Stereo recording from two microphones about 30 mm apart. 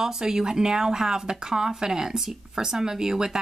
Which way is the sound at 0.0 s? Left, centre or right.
Centre.